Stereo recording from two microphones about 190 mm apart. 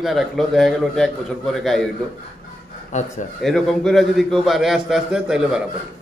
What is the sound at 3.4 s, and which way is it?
A man's voice, centre (ahead or behind).